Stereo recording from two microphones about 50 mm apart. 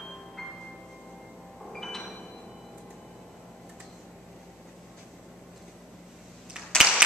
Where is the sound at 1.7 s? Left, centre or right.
Centre.